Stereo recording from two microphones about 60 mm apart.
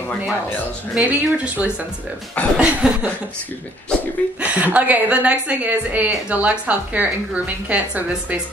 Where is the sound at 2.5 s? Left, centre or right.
Centre.